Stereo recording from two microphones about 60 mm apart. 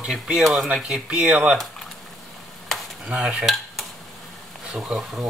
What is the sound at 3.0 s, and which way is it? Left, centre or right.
Speech, centre.